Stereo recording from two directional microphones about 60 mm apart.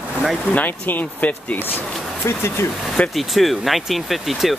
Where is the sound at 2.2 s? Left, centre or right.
Left.